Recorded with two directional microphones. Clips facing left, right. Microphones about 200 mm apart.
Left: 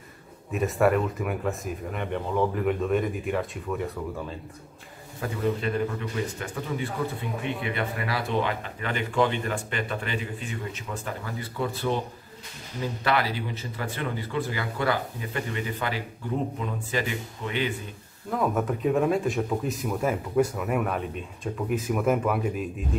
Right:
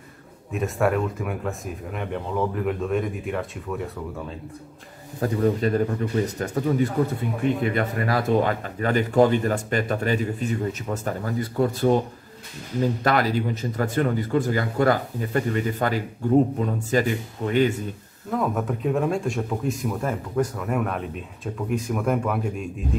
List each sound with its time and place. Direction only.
0.5 s speech: centre (ahead or behind)
5.2 s speech: 40° right (ahead or behind)
18.3 s speech: centre (ahead or behind)